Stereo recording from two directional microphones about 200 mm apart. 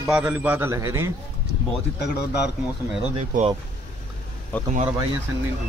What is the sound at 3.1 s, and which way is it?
Speech, 30° right (ahead or behind).